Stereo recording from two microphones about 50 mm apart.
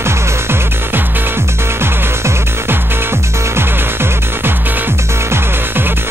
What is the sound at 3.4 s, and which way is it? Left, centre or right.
Music, right.